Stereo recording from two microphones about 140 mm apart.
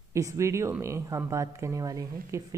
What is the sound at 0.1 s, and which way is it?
Speech, 20° right (ahead or behind).